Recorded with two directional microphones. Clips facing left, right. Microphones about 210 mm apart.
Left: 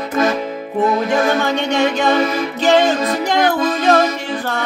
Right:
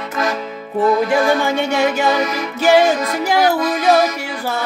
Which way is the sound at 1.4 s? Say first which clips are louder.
Even; 10° right (ahead or behind).